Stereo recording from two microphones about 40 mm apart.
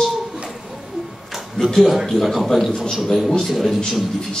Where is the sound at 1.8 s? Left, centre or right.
Centre.